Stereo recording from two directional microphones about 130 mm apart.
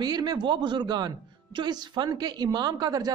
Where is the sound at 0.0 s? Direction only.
30° right (ahead or behind).